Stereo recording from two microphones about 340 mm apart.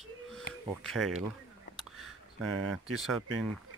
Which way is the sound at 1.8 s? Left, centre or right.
Centre.